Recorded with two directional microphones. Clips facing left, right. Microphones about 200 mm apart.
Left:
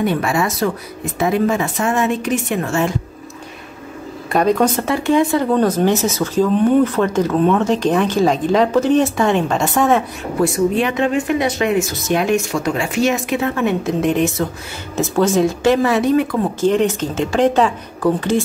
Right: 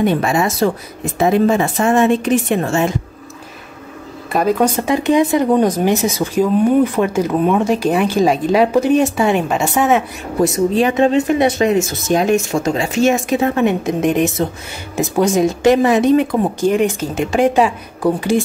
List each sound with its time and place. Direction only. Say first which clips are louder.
0.0 s speech: right 2 dB; 25° right (ahead or behind)
4.3 s speech: even; 5° right (ahead or behind)
10.4 s speech: right 2 dB; 40° right (ahead or behind)
10.8 s speech: right 4 dB; 25° right (ahead or behind)
12.4 s speech: right 2 dB; 25° right (ahead or behind)